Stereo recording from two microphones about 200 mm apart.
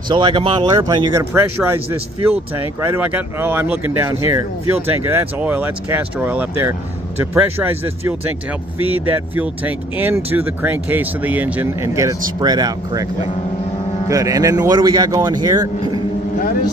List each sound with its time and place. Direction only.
0.1 s a man's voice: 25° right (ahead or behind)